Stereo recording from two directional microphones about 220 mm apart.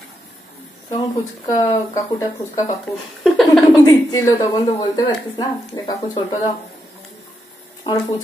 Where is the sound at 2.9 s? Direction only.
Centre (ahead or behind).